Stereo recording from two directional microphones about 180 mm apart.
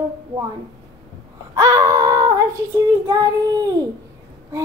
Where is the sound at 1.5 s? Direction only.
15° right (ahead or behind).